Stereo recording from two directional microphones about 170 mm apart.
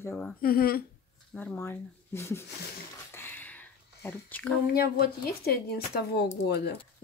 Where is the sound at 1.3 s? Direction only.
5° left (ahead or behind).